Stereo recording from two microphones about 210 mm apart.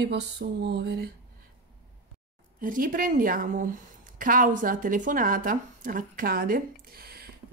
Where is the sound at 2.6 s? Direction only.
40° right (ahead or behind).